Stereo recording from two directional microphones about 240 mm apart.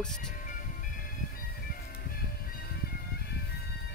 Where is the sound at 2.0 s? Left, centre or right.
Left.